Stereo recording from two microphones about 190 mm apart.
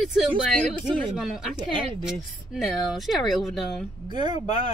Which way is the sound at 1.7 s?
25° right (ahead or behind).